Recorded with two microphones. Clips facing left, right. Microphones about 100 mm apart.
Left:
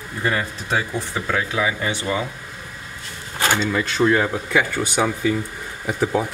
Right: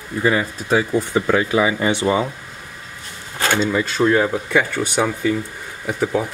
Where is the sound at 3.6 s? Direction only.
5° right (ahead or behind).